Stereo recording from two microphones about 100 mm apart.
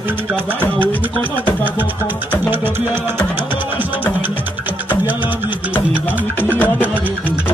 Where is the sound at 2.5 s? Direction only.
20° right (ahead or behind).